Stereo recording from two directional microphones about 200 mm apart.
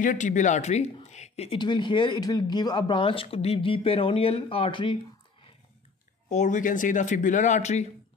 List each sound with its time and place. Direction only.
0.0 s a woman's voice: 40° left (ahead or behind)
6.2 s speech: 35° left (ahead or behind)